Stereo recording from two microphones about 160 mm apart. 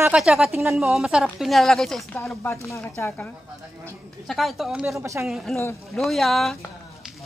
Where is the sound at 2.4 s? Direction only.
15° left (ahead or behind).